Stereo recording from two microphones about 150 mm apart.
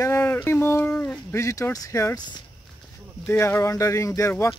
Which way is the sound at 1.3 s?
20° left (ahead or behind).